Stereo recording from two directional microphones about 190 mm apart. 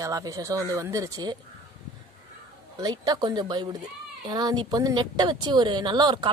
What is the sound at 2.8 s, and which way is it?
Speech, 20° right (ahead or behind).